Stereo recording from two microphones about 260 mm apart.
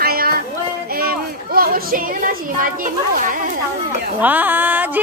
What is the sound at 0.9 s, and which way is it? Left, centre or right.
A child's voice, right.